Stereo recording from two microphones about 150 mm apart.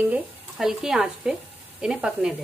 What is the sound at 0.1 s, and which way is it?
A woman's voice, 5° right (ahead or behind).